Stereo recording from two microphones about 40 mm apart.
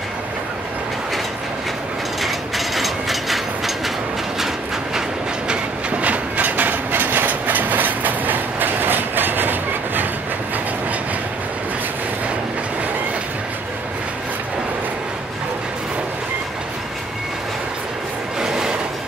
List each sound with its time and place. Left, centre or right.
2.2 s ratchet: centre
5.5 s train: right
18.4 s train: centre